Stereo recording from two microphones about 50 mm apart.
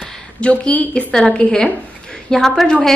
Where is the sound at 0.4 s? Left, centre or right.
Left.